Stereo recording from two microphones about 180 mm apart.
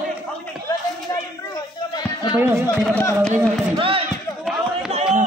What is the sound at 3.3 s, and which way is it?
Speech, 30° right (ahead or behind).